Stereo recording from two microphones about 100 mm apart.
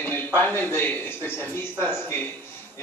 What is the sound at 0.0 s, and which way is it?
Speech, 20° left (ahead or behind).